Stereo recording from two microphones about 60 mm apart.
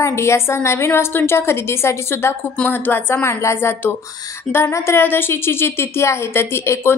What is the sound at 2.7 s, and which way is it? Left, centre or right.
Speech, left.